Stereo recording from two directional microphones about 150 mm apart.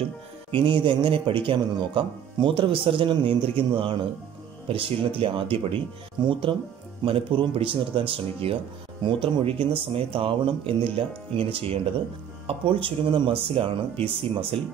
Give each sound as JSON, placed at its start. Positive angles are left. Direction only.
{"t": 0.5, "sound": "speech", "side_deg": -35}